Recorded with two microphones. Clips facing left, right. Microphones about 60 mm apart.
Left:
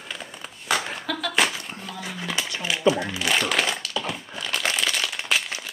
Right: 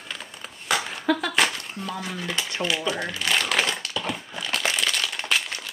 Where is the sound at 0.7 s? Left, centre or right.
Centre.